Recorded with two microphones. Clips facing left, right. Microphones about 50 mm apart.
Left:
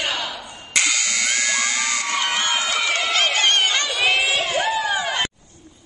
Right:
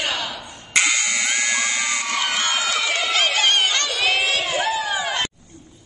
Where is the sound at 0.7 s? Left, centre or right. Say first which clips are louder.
Right 2 dB; centre.